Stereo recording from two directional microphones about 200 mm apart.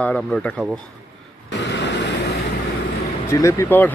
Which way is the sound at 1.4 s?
60° left (ahead or behind).